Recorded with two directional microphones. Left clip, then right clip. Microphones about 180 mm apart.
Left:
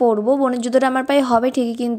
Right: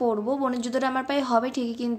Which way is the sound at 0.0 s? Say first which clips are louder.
Left 9 dB; 40° left (ahead or behind).